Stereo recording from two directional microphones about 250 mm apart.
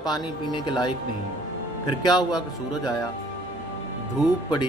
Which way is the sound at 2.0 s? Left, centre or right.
Centre.